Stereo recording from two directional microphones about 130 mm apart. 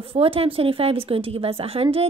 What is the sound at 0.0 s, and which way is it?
A woman's voice, 45° right (ahead or behind).